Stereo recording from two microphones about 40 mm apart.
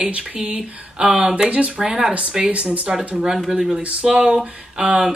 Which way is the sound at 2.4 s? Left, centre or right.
Right.